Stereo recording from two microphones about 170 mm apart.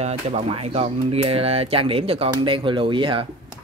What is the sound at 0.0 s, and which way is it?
Speech, 35° right (ahead or behind).